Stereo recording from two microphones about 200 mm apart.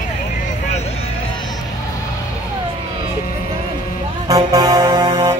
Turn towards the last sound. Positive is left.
turn(degrees=-20)  # may be behind; listen again after turning